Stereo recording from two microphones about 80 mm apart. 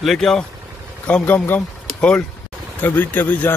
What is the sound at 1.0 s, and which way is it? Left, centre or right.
Speech, left.